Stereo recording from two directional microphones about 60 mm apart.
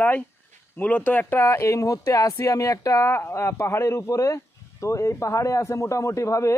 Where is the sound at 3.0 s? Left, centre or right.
Left.